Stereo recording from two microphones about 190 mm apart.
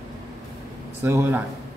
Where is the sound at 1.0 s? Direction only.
10° right (ahead or behind).